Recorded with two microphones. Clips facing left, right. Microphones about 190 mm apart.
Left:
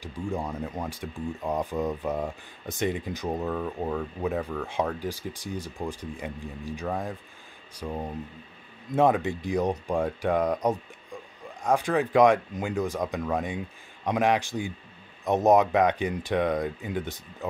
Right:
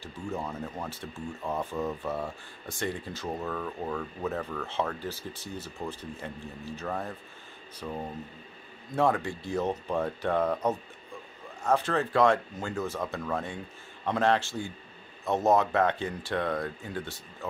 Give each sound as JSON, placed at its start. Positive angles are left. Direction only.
{"t": 0.0, "sound": "speech", "side_deg": 15}